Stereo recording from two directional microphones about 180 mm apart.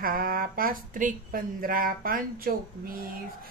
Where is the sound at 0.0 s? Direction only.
55° right (ahead or behind).